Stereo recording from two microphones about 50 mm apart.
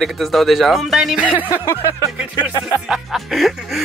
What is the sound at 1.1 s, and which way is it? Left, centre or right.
Speech, right.